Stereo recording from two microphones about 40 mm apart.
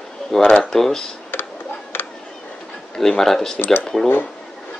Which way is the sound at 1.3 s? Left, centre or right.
Left.